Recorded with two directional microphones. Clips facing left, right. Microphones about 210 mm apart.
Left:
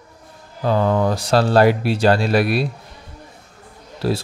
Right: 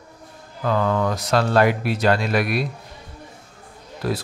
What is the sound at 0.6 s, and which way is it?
Speech, 30° left (ahead or behind).